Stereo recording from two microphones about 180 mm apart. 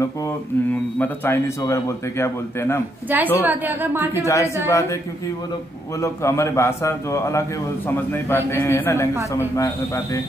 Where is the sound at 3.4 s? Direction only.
10° right (ahead or behind).